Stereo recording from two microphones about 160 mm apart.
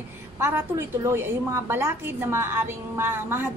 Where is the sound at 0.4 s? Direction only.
15° right (ahead or behind).